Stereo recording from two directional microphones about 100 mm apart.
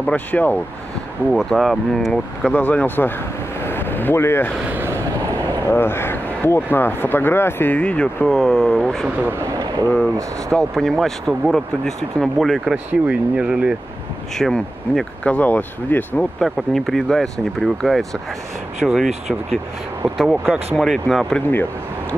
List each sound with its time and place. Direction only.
0.0 s speech: 15° left (ahead or behind)
1.3 s speech: centre (ahead or behind)
2.5 s speech: 15° left (ahead or behind)
4.6 s vehicle: 20° right (ahead or behind)
5.7 s speech: 25° left (ahead or behind)
8.3 s speech: 5° left (ahead or behind)
9.2 s speech: 25° right (ahead or behind)
9.6 s a sound: 40° right (ahead or behind)
10.5 s speech: 5° left (ahead or behind)
12.7 s speech: 10° right (ahead or behind)
14.3 s speech: 5° left (ahead or behind)
15.2 s speech: 15° left (ahead or behind)
16.3 s speech: centre (ahead or behind)
20.7 s speech: centre (ahead or behind)